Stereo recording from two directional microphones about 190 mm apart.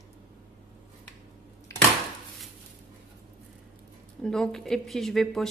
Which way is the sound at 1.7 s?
15° left (ahead or behind).